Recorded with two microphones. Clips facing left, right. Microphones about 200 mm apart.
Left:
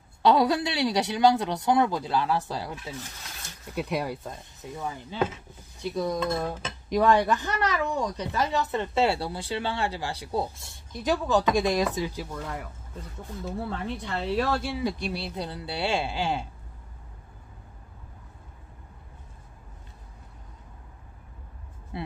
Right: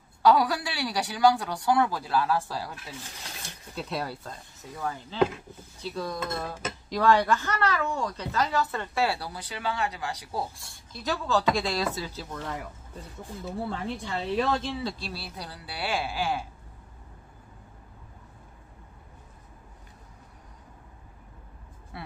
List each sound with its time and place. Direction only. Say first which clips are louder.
0.2 s speech: left 1 dB; 25° left (ahead or behind)
3.7 s speech: left 4 dB; 15° left (ahead or behind)
5.8 s dishes: left 5 dB; 15° left (ahead or behind)
6.4 s speech: left 2 dB; 20° left (ahead or behind)
21.9 s music: left 6 dB; 20° left (ahead or behind)